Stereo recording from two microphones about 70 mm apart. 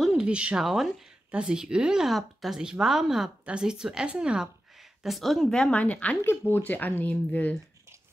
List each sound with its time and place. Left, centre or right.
0.2 s speech: centre
0.7 s speech: centre
5.0 s speech: centre
5.7 s speech: left
6.2 s speech: left